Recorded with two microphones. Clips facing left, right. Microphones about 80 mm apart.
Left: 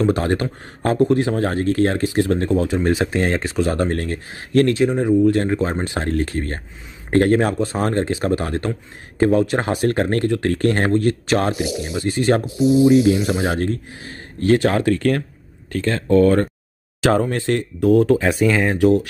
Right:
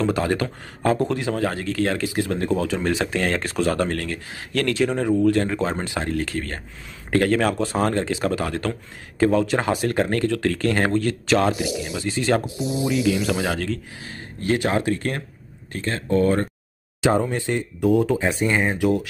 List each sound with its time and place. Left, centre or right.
0.0 s speech: left
14.5 s speech: left
17.3 s speech: left
17.7 s speech: left
18.2 s speech: left